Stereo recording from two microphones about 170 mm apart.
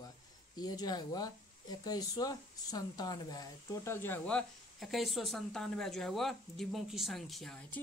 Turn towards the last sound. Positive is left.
turn(degrees=0)  # may be behind; listen again after turning